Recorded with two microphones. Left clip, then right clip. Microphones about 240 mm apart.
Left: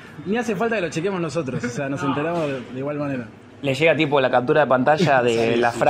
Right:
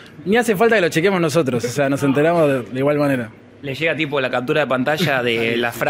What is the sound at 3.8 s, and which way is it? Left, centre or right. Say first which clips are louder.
Speech: left 2 dB; centre.